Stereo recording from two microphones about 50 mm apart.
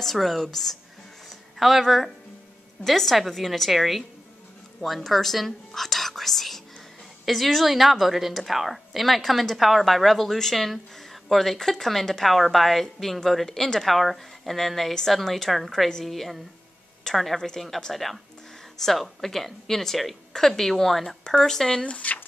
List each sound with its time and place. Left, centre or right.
0.0 s a woman's voice: centre
21.8 s speech: left